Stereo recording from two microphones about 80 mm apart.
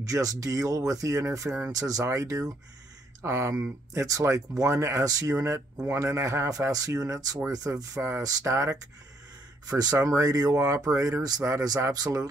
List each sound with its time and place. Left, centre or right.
0.0 s speech: right
3.2 s speech: right
7.9 s speech: right
8.2 s speech: right
9.7 s speech: right
9.9 s speech: right